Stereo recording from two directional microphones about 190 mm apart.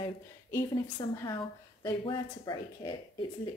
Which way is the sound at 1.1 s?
20° left (ahead or behind).